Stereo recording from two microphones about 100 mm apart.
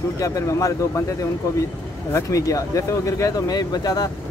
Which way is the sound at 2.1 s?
30° left (ahead or behind).